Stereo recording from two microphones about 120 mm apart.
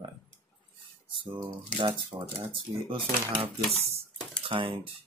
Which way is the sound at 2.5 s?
45° right (ahead or behind).